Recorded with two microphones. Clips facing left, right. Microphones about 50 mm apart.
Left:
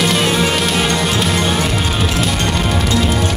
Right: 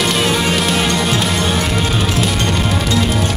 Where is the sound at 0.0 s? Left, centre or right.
Centre.